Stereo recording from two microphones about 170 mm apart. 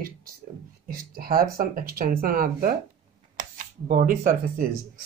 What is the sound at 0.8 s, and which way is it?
Speech, 60° right (ahead or behind).